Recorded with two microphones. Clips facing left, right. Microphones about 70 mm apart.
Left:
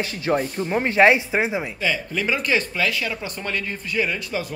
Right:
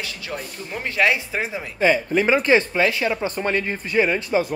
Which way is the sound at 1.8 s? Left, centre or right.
Right.